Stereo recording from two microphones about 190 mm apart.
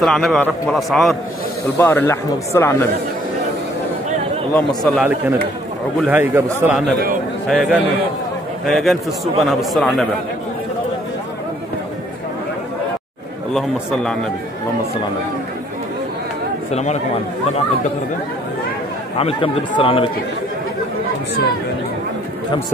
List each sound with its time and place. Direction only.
0.0 s a man's voice: centre (ahead or behind)
1.8 s speech: 10° left (ahead or behind)
4.6 s a man's voice: centre (ahead or behind)
5.9 s a man's voice: 10° right (ahead or behind)
7.4 s a man's voice: centre (ahead or behind)
13.5 s a man's voice: 5° left (ahead or behind)
16.7 s speech: 35° left (ahead or behind)
19.1 s speech: 30° left (ahead or behind)